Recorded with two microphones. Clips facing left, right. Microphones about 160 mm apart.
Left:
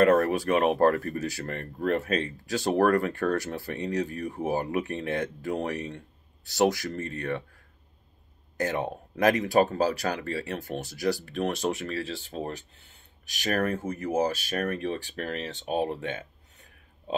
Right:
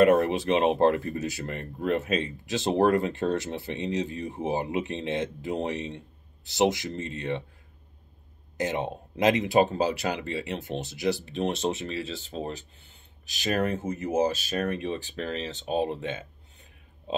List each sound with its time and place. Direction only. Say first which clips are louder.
0.0 s speech: right 1 dB; 20° right (ahead or behind)
8.5 s speech: even; 20° right (ahead or behind)